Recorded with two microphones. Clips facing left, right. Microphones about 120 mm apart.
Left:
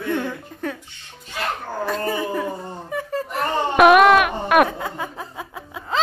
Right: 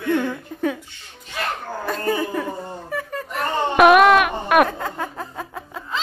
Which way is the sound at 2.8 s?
25° left (ahead or behind).